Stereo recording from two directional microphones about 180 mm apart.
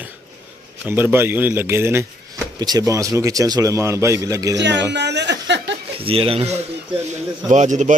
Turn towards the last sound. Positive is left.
turn(degrees=-40)  # may be behind; listen again after turning